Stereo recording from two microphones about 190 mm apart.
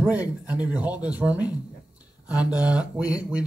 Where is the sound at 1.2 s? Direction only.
5° right (ahead or behind).